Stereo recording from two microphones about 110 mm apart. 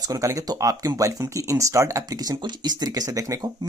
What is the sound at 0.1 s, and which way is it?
Speech, 30° right (ahead or behind).